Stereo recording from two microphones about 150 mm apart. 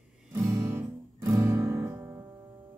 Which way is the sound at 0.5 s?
20° right (ahead or behind).